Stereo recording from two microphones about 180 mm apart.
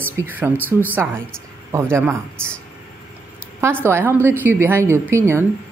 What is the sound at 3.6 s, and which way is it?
Speech, 15° right (ahead or behind).